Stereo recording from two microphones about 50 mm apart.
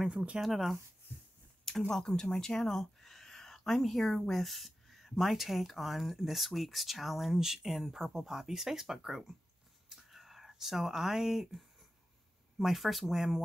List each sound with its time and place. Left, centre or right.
0.1 s speech: right
0.4 s speech: centre
1.9 s speech: centre
9.8 s whispering: centre
12.5 s speech: centre